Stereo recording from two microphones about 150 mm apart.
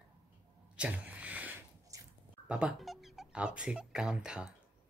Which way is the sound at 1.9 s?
20° right (ahead or behind).